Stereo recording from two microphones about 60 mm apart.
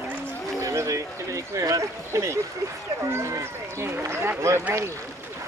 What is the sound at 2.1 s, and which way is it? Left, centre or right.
Speech, right.